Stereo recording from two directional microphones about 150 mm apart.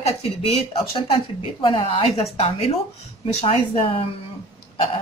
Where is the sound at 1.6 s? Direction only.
35° left (ahead or behind).